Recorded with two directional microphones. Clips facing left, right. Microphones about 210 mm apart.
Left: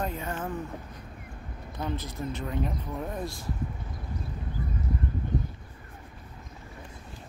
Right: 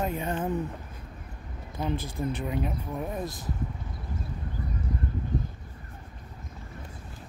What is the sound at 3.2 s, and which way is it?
Speech, 20° right (ahead or behind).